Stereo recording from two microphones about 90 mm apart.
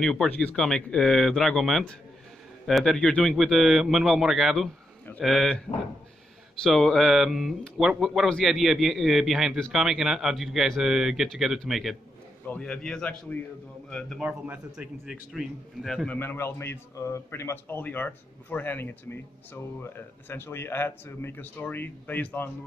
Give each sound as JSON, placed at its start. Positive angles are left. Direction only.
{"t": 0.0, "sound": "a man's voice", "side_deg": 5}
{"t": 0.3, "sound": "a man's voice", "side_deg": 20}
{"t": 0.6, "sound": "a man's voice", "side_deg": 10}
{"t": 6.6, "sound": "a man's voice", "side_deg": 5}
{"t": 12.4, "sound": "a man's voice", "side_deg": 10}
{"t": 14.2, "sound": "a man's voice", "side_deg": -15}
{"t": 15.0, "sound": "a man's voice", "side_deg": 0}
{"t": 16.1, "sound": "a man's voice", "side_deg": 25}